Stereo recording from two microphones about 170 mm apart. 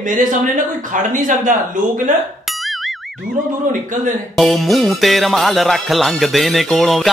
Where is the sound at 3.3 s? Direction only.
50° right (ahead or behind).